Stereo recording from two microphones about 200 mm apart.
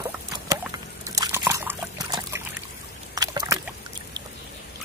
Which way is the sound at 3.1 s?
20° right (ahead or behind).